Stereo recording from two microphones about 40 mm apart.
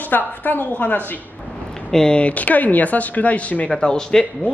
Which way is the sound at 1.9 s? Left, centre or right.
Centre.